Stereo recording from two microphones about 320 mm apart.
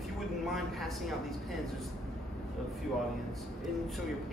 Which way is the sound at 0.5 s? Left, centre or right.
Centre.